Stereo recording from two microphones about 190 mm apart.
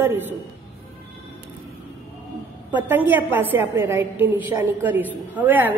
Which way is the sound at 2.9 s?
10° right (ahead or behind).